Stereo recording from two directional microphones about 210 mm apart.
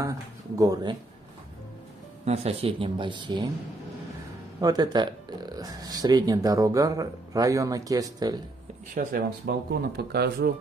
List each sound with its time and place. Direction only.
0.6 s speech: 15° right (ahead or behind)
2.2 s speech: 30° right (ahead or behind)
4.6 s speech: 20° right (ahead or behind)
8.9 s speech: 45° right (ahead or behind)